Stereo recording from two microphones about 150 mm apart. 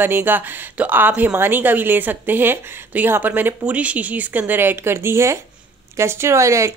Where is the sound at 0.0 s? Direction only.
15° right (ahead or behind).